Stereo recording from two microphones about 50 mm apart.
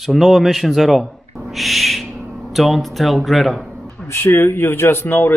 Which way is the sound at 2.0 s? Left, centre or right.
Right.